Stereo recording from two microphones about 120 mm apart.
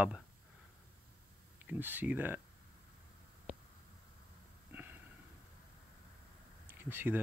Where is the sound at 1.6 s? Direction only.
15° right (ahead or behind).